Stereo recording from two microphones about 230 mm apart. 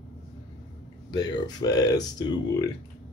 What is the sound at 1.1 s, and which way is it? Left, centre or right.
Speech, centre.